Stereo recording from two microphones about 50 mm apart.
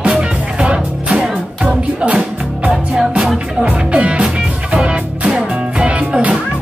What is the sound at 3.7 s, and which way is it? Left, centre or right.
Music, right.